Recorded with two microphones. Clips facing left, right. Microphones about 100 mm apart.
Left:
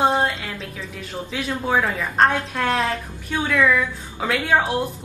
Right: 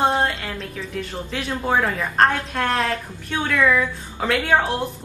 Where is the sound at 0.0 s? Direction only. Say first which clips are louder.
Left 1 dB; centre (ahead or behind).